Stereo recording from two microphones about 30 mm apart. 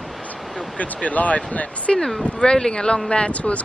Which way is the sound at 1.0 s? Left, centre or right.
Left.